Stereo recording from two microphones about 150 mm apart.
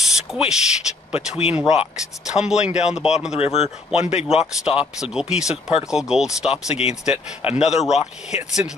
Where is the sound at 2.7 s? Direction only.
50° left (ahead or behind).